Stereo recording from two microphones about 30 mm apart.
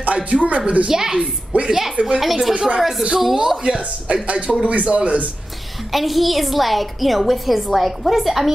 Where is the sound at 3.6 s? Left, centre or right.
Right.